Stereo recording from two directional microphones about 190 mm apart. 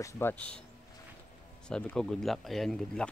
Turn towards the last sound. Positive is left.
turn(degrees=5)  # may be behind; listen again after turning